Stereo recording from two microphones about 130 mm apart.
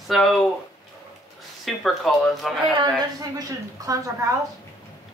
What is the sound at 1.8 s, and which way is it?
Speech, centre (ahead or behind).